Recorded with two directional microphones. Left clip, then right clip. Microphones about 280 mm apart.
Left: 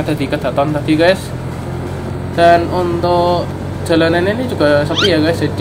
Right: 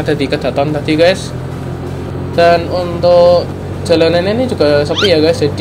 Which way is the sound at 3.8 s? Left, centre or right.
Centre.